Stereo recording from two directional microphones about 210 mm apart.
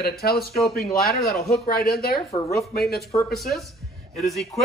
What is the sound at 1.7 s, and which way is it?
Speech, 45° left (ahead or behind).